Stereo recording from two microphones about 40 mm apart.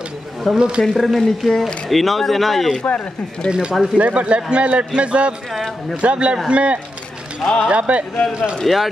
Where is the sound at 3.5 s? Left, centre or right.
Right.